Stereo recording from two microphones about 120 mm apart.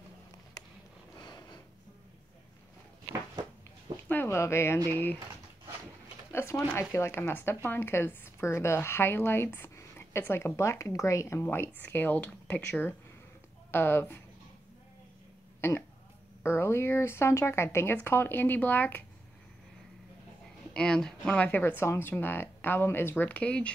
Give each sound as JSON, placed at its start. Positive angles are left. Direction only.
{"t": 1.1, "sound": "a sound", "side_deg": 35}
{"t": 4.1, "sound": "speech", "side_deg": 20}
{"t": 6.3, "sound": "a sound", "side_deg": 25}
{"t": 6.7, "sound": "a woman's voice", "side_deg": 20}
{"t": 15.6, "sound": "a woman's voice", "side_deg": 20}
{"t": 20.7, "sound": "speech", "side_deg": 5}